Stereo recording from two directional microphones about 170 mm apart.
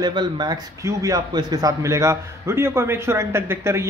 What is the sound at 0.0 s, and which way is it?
A man's voice, 25° right (ahead or behind).